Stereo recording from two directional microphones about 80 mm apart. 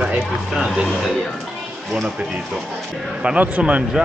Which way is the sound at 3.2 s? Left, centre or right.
Centre.